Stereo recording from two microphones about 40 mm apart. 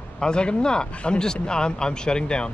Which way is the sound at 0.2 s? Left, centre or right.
Left.